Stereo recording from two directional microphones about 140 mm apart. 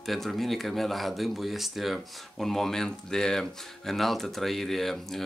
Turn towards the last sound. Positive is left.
turn(degrees=0)  # may be behind; listen again after turning